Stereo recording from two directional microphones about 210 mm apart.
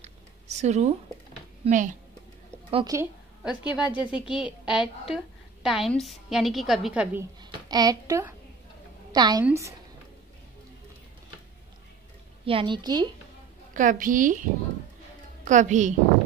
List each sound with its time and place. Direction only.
0.0 s a sound: 30° right (ahead or behind)
1.6 s a woman's voice: 35° right (ahead or behind)
2.7 s a woman's voice: 20° right (ahead or behind)
3.4 s a woman's voice: 5° right (ahead or behind)
7.6 s a woman's voice: 20° right (ahead or behind)
12.4 s a woman's voice: 25° right (ahead or behind)
13.7 s a woman's voice: 40° right (ahead or behind)
15.4 s a woman's voice: 35° right (ahead or behind)